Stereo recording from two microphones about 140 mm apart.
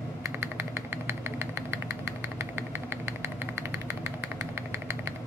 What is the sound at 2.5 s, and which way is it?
Vehicle, 15° right (ahead or behind).